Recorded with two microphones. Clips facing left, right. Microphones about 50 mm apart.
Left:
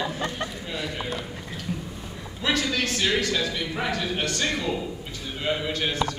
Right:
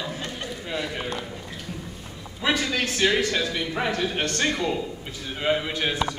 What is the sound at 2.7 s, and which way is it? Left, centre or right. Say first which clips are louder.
A man's voice: right 2 dB; right.